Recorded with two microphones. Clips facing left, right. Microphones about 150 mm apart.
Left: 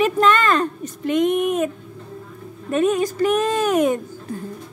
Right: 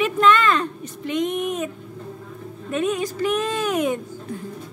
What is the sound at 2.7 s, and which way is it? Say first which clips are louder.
Speech: left 5 dB; 45° left (ahead or behind).